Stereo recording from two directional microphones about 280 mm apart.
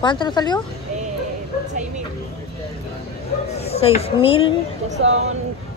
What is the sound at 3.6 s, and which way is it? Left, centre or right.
Speech, left.